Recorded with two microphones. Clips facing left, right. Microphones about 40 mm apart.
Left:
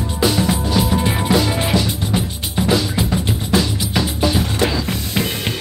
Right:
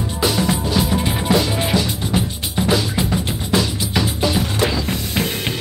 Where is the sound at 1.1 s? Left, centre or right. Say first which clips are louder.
Left 1 dB; left.